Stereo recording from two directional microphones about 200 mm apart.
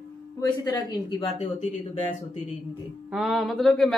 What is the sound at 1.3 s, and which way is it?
Speech, 35° left (ahead or behind).